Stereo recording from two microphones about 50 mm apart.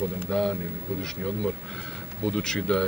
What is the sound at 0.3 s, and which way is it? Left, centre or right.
Speech, centre.